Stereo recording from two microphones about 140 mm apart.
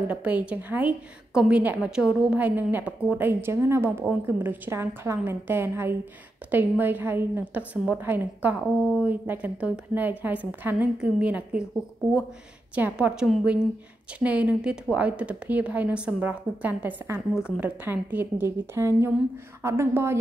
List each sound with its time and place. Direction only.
0.1 s a woman's voice: 10° right (ahead or behind)
12.7 s a woman's voice: 10° right (ahead or behind)